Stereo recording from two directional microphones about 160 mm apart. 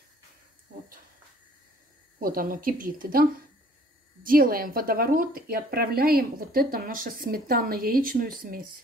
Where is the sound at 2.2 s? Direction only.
60° right (ahead or behind).